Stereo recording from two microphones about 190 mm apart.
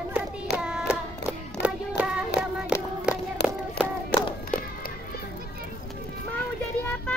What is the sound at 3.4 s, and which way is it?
Child singing, 60° left (ahead or behind).